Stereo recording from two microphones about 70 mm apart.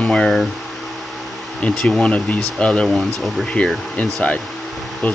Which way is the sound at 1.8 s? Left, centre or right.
Centre.